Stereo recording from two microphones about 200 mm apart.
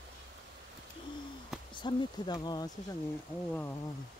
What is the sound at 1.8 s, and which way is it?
Speech, 20° left (ahead or behind).